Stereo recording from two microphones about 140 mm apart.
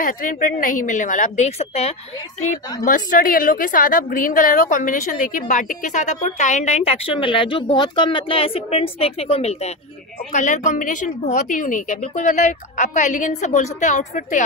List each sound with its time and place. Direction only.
0.0 s a woman's voice: 75° left (ahead or behind); by 2.0 s 50° left (ahead or behind)
2.4 s a woman's voice: 70° left (ahead or behind); by 9.7 s 50° left (ahead or behind)
10.3 s a woman's voice: 65° left (ahead or behind)